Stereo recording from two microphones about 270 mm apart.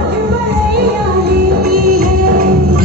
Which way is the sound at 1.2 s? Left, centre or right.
Right.